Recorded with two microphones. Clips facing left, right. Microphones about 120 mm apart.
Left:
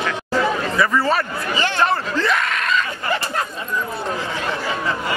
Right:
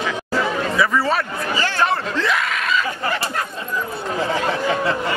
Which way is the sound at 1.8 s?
Centre (ahead or behind).